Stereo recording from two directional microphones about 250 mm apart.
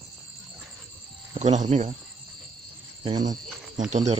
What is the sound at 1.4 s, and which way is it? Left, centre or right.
Speech, right.